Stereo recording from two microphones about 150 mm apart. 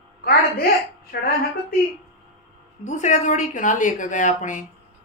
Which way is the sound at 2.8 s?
55° left (ahead or behind).